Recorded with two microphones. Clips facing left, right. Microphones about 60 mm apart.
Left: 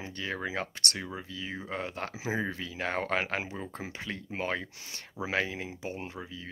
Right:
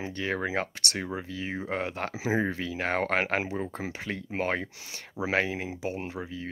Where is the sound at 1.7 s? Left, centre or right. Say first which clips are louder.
Right 4 dB; right.